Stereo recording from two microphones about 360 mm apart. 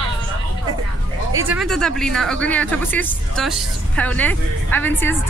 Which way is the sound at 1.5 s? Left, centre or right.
Centre.